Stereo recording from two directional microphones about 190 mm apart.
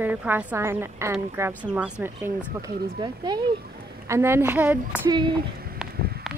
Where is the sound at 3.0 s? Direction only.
20° right (ahead or behind).